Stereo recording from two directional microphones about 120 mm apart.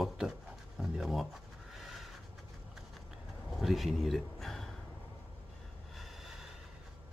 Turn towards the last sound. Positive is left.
turn(degrees=0)  # may be behind; listen again after turning